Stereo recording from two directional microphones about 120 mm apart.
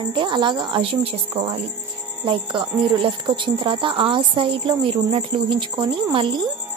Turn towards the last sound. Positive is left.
turn(degrees=-45)  # may be behind; listen again after turning